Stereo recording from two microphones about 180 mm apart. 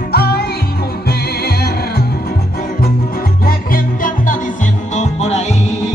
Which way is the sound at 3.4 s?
50° left (ahead or behind).